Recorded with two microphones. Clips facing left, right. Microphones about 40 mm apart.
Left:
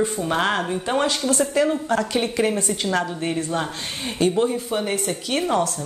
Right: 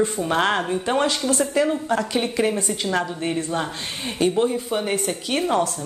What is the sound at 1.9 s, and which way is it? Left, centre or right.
Speech, right.